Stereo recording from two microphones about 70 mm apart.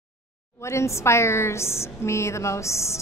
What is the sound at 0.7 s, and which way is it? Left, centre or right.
A woman's voice, left.